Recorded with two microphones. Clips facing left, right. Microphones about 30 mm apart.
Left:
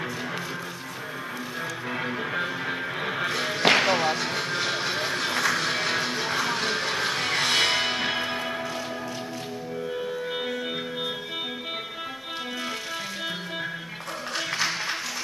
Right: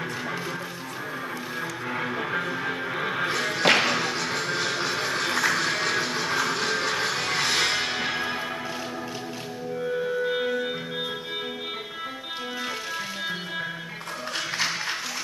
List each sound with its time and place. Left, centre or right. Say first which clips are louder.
1.9 s music: right 2 dB; centre
4.8 s vehicle: even; centre
5.1 s music: right 2 dB; centre
8.0 s church bell: left 1 dB; centre